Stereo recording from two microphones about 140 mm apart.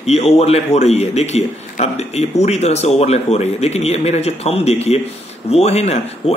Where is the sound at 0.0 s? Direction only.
50° left (ahead or behind).